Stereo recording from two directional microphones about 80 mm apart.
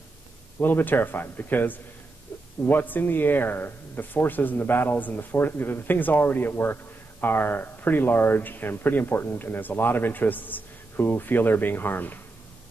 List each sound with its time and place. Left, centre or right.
0.6 s speech: left